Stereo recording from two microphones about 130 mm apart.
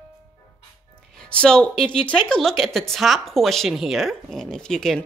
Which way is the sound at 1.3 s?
5° left (ahead or behind).